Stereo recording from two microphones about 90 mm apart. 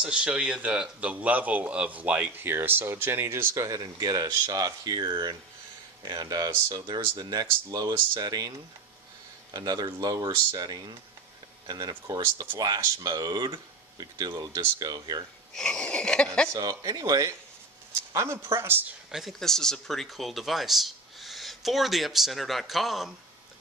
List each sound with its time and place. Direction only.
0.0 s speech: 10° right (ahead or behind); by 14.0 s 55° right (ahead or behind)
14.4 s speech: 40° right (ahead or behind)
15.5 s a sound: 5° left (ahead or behind)
16.5 s speech: 45° right (ahead or behind); by 18.9 s 25° right (ahead or behind)
19.1 s speech: centre (ahead or behind)